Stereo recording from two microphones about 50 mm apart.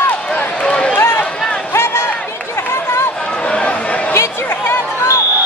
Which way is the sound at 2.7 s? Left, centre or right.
Left.